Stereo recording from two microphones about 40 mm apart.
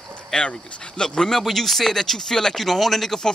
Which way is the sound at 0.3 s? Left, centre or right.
Left.